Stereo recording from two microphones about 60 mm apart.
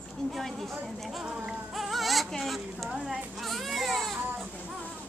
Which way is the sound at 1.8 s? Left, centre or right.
Centre.